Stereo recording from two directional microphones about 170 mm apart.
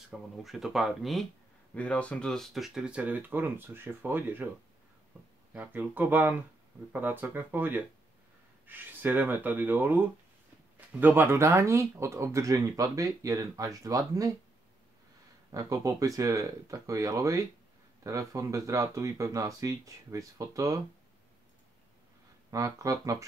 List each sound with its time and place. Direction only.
0.1 s speech: centre (ahead or behind)
5.5 s speech: 10° right (ahead or behind)
15.5 s speech: 20° right (ahead or behind)
22.5 s speech: 20° right (ahead or behind)